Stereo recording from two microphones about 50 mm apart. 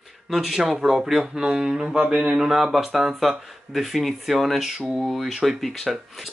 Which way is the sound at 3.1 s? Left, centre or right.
Centre.